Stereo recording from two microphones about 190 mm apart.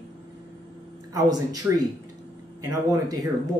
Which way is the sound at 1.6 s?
10° right (ahead or behind).